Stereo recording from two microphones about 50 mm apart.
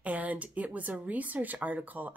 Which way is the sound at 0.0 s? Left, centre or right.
Right.